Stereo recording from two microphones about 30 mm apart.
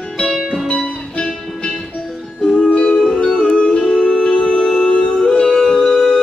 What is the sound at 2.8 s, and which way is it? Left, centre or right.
Music, left.